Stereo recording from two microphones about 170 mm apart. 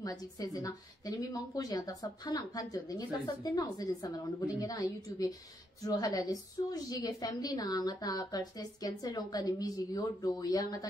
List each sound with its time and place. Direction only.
0.0 s a woman's voice: 20° left (ahead or behind)